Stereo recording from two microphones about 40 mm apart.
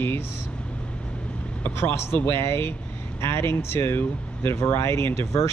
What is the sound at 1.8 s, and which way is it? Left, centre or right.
Speech, left.